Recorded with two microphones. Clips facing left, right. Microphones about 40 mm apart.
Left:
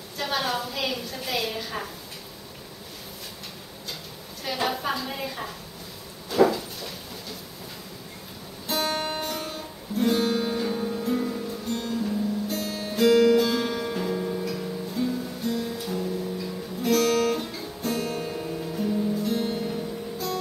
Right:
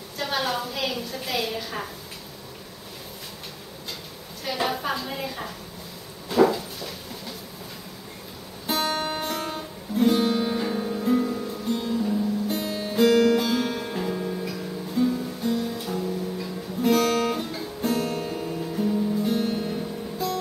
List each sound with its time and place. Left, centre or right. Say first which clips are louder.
0.2 s a sound: right 1 dB; centre
4.5 s a woman's voice: right 1 dB; centre
6.3 s a sound: right 1 dB; centre
8.6 s music: right 1 dB; centre
16.8 s guitar: right 1 dB; centre
17.9 s music: right 1 dB; right
18.2 s music: right 1 dB; centre